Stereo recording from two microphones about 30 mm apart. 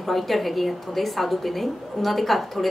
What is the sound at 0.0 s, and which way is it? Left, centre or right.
A woman's voice, centre.